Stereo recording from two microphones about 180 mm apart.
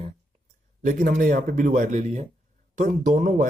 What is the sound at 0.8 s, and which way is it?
Speech, 50° right (ahead or behind).